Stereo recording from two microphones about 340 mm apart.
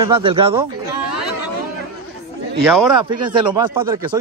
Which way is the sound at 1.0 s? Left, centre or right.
Right.